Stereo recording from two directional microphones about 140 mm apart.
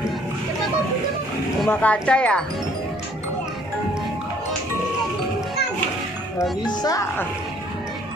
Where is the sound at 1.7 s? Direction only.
10° left (ahead or behind).